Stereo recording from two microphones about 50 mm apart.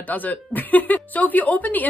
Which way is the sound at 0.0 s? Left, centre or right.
Left.